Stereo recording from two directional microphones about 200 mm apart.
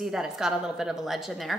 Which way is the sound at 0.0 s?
Centre (ahead or behind).